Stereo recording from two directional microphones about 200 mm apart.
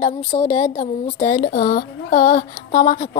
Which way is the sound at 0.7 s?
45° left (ahead or behind).